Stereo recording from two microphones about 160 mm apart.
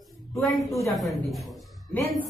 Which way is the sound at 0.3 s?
Centre (ahead or behind).